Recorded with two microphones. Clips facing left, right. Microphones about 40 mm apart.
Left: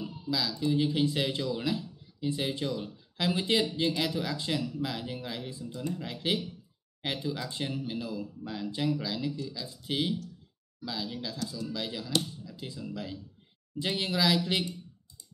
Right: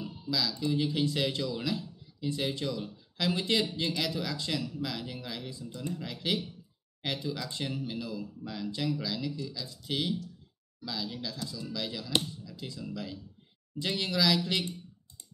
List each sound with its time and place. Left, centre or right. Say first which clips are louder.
0.0 s speech: even; centre